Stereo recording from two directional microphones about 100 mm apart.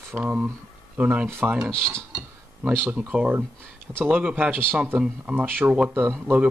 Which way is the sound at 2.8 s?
15° right (ahead or behind).